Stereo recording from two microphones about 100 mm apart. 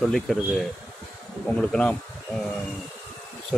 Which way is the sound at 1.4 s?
10° left (ahead or behind).